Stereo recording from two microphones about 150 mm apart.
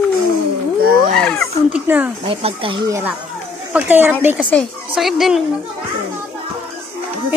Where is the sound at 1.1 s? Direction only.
5° left (ahead or behind).